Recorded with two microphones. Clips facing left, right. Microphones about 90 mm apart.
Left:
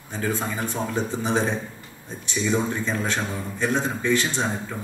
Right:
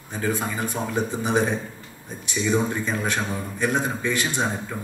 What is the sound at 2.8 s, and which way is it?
A man's voice, 15° right (ahead or behind).